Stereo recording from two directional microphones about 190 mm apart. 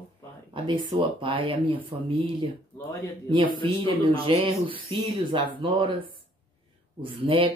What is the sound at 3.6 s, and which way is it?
Speech, 30° right (ahead or behind).